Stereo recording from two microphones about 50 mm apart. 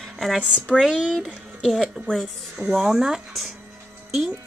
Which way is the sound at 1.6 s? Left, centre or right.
Centre.